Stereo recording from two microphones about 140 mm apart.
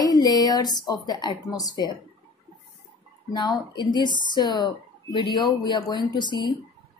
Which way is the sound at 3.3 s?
30° left (ahead or behind).